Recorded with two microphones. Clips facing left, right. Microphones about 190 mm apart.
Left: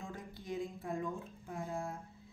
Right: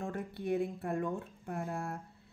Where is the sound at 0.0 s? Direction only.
60° right (ahead or behind).